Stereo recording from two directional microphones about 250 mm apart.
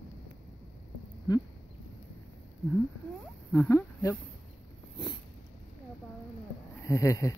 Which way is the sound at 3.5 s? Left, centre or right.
Centre.